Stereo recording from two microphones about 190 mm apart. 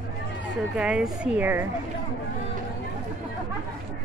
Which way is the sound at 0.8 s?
5° right (ahead or behind).